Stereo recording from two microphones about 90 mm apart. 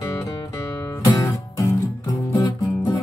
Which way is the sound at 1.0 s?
40° left (ahead or behind).